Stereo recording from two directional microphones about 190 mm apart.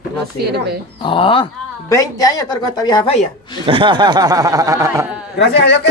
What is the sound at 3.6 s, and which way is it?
Speech, 25° right (ahead or behind).